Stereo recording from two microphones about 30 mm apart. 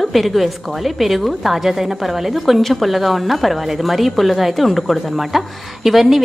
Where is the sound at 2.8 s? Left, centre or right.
Centre.